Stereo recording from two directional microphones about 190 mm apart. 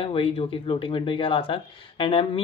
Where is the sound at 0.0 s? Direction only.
30° left (ahead or behind).